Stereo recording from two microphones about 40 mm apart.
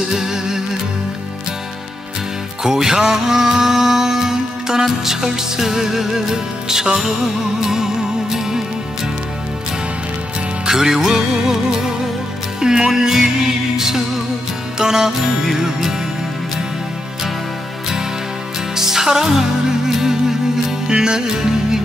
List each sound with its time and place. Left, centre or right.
0.1 s music: centre
2.6 s music: centre
10.7 s music: centre
18.8 s music: centre